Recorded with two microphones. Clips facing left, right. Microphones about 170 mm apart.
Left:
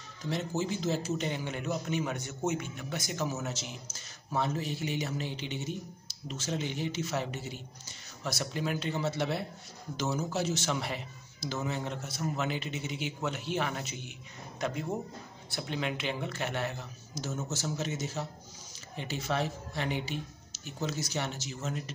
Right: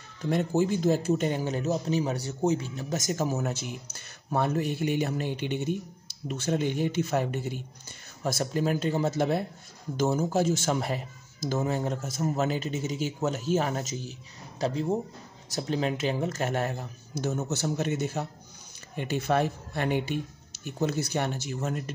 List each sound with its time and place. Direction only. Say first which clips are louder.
0.2 s speech: right 7 dB; 60° right (ahead or behind)